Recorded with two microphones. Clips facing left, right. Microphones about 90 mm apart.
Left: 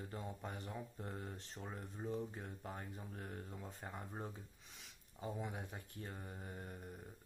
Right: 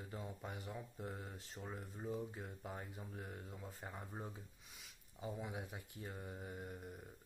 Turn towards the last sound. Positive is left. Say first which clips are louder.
# right 1 dB
turn(degrees=0)  # may be behind; listen again after turning